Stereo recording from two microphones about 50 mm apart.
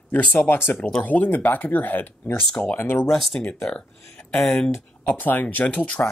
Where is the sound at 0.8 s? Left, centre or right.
Centre.